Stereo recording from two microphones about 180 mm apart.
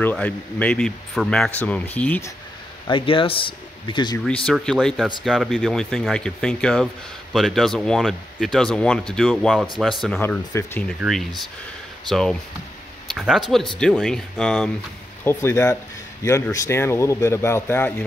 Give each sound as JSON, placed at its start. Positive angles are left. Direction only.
{"t": 0.0, "sound": "speech", "side_deg": 10}
{"t": 2.9, "sound": "speech", "side_deg": 30}
{"t": 4.6, "sound": "speech", "side_deg": 0}
{"t": 10.2, "sound": "speech", "side_deg": 10}